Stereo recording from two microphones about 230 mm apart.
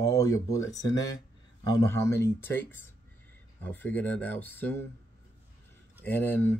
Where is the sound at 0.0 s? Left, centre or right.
Centre.